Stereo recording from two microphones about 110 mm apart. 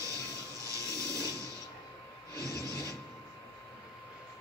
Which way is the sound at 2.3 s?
30° right (ahead or behind).